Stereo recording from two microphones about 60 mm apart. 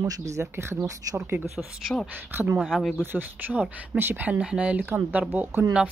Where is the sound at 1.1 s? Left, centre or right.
Right.